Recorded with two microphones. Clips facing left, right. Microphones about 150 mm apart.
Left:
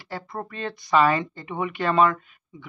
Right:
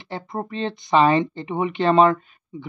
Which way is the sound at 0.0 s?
20° right (ahead or behind).